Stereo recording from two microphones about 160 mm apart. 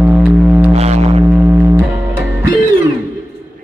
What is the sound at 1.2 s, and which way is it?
Music, 10° right (ahead or behind).